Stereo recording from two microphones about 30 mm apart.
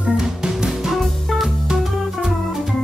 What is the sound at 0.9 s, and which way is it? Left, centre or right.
Music, centre.